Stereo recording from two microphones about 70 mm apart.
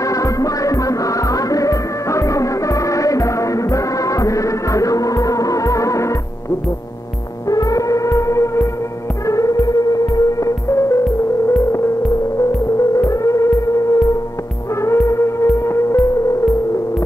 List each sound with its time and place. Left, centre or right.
0.0 s music: left
7.4 s music: left
12.9 s music: left